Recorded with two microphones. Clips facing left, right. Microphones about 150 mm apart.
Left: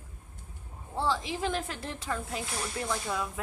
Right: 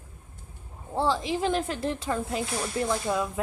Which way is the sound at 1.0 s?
20° right (ahead or behind).